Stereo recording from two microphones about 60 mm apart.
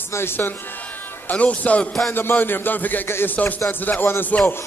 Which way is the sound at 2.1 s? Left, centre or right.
Left.